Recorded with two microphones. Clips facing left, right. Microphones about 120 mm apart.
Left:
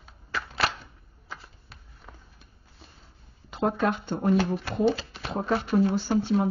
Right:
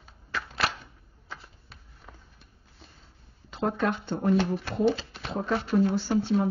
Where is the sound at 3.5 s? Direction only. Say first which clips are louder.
Left 2 dB; 15° left (ahead or behind).